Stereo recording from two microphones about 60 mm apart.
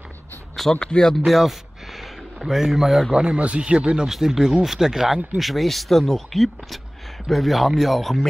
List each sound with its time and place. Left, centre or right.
0.7 s speech: centre
1.2 s a sound: centre
3.1 s speech: centre
3.3 s speech: right
4.1 s speech: centre